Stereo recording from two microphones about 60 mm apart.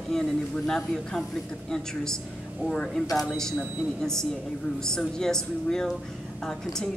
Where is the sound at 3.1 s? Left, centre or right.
Centre.